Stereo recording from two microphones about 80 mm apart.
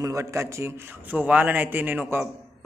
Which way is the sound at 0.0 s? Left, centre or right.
Right.